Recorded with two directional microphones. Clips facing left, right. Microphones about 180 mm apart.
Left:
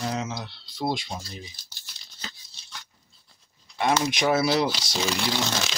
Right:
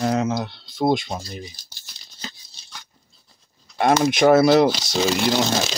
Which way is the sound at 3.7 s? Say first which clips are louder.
Right 6 dB; 50° right (ahead or behind).